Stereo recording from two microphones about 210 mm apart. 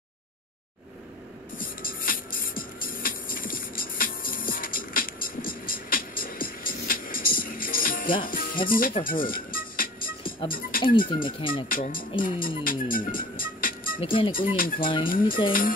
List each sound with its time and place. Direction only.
1.6 s music: 45° left (ahead or behind)
8.2 s speech: 40° left (ahead or behind)
9.0 s music: 40° left (ahead or behind)
11.2 s speech: 25° left (ahead or behind)
11.7 s speech: 40° left (ahead or behind)
13.9 s speech: 25° left (ahead or behind)
14.3 s speech: 40° left (ahead or behind)